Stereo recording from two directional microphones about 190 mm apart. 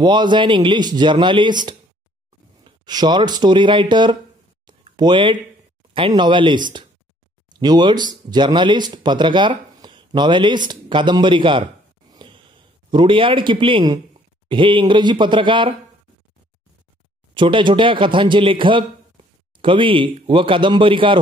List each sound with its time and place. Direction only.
0.0 s speech: 25° right (ahead or behind)
4.6 s a sound: 25° right (ahead or behind)
5.9 s speech: 25° right (ahead or behind)
17.3 s speech: 25° right (ahead or behind)